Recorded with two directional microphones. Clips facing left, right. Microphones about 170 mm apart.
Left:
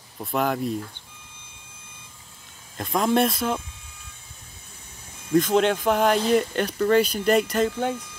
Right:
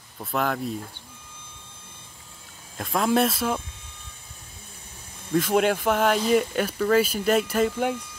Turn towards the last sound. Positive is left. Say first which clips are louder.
# even
turn(degrees=-5)  # may be behind; listen again after turning